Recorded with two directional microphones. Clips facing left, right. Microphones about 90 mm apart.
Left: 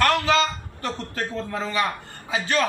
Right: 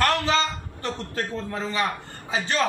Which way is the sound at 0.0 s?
30° right (ahead or behind).